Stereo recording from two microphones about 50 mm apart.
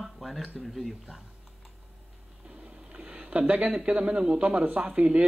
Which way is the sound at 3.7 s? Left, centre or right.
Centre.